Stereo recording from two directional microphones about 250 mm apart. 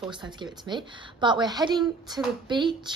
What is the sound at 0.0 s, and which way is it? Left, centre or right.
A woman's voice, centre.